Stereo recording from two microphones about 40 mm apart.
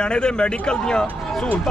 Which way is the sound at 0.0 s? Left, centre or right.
Left.